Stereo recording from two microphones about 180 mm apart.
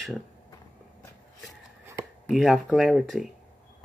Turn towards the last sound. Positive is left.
turn(degrees=0)  # may be behind; listen again after turning